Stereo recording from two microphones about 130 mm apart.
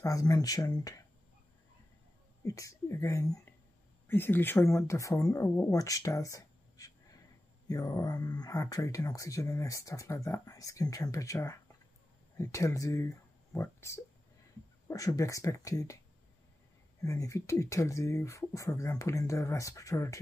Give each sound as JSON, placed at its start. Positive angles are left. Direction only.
{"t": 0.0, "sound": "speech", "side_deg": 25}
{"t": 2.4, "sound": "speech", "side_deg": 25}
{"t": 17.0, "sound": "speech", "side_deg": 25}